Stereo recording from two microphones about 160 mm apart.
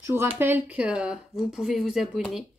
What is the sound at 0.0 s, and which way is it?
Speech, 15° right (ahead or behind).